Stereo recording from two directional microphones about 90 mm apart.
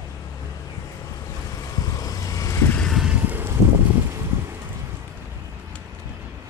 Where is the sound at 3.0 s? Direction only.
15° right (ahead or behind).